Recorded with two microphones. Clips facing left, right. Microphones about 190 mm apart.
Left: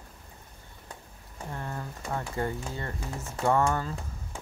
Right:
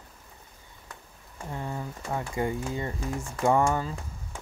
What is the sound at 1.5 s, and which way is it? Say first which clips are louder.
Speech: right 3 dB; 10° right (ahead or behind).